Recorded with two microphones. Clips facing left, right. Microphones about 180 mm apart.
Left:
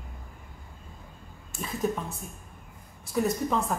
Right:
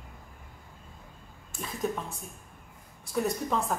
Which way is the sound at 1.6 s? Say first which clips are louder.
Left 3 dB; centre (ahead or behind).